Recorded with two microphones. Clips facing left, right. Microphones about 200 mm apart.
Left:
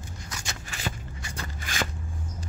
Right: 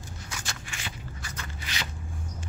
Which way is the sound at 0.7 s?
40° left (ahead or behind).